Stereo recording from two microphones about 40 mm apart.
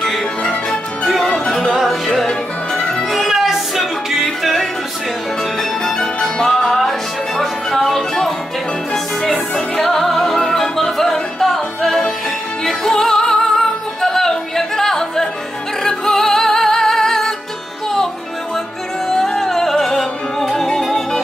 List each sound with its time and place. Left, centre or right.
0.4 s music: left
3.0 s music: centre
5.6 s music: centre
9.8 s music: centre
19.0 s music: centre